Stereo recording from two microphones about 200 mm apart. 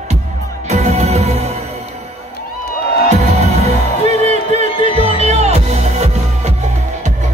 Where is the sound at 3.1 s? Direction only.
30° right (ahead or behind).